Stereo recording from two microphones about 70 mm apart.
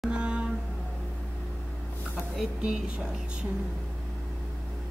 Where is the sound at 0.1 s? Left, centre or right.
Centre.